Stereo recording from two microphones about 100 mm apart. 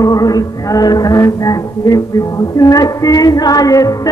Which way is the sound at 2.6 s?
35° left (ahead or behind).